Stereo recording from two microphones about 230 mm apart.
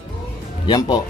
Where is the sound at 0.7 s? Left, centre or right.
Centre.